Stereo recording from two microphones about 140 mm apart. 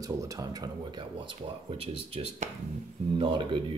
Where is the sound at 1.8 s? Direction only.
45° right (ahead or behind).